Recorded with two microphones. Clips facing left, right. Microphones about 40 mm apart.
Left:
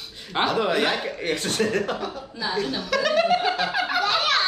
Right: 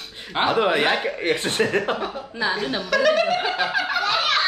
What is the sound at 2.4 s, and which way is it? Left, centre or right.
Speech, right.